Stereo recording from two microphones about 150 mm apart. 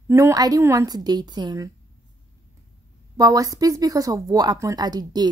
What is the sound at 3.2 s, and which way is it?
Speech, 25° right (ahead or behind).